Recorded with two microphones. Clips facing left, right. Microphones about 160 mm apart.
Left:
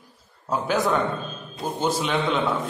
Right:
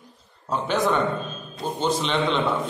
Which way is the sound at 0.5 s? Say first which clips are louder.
Even; 5° left (ahead or behind).